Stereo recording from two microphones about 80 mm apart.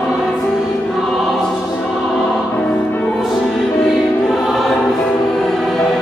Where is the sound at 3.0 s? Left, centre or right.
Centre.